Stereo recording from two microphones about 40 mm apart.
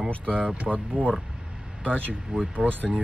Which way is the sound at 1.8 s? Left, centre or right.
Left.